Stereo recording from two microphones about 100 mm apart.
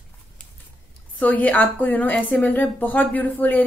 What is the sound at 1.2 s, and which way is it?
A woman's voice, 15° left (ahead or behind).